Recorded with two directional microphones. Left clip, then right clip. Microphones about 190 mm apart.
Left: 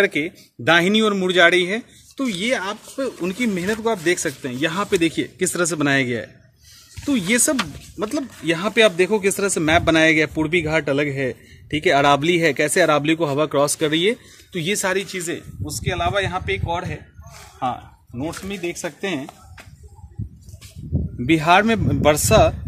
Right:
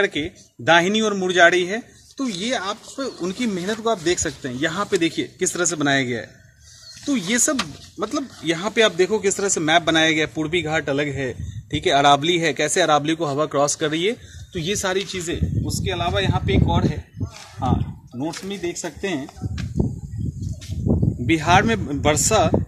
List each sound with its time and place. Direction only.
0.0 s speech: 40° left (ahead or behind)
7.2 s speech: 40° left (ahead or behind); by 17.0 s 10° left (ahead or behind)
18.2 s speech: 20° left (ahead or behind)
21.4 s speech: 45° left (ahead or behind)